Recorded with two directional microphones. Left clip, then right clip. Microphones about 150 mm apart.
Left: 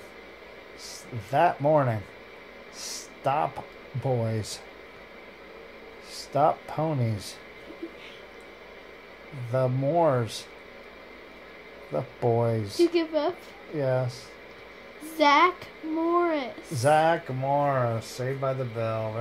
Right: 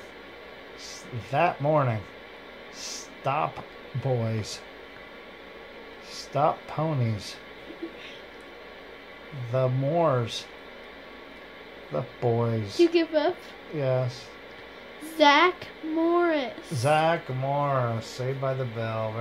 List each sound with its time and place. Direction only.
0.8 s speech: 40° left (ahead or behind)
2.8 s a sound: 40° left (ahead or behind)
4.0 s speech: 40° left (ahead or behind)
6.3 s speech: 40° left (ahead or behind)
9.5 s speech: 40° left (ahead or behind)
11.9 s speech: 40° left (ahead or behind)
12.9 s a woman's voice: 5° right (ahead or behind)
13.7 s speech: 40° left (ahead or behind)
15.1 s a woman's voice: 5° right (ahead or behind)
16.7 s speech: 40° left (ahead or behind)